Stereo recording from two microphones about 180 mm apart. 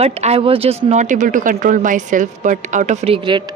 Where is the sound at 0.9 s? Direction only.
45° right (ahead or behind).